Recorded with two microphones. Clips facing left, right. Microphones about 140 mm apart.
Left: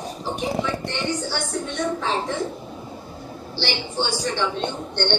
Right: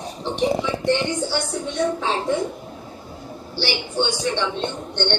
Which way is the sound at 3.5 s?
10° right (ahead or behind).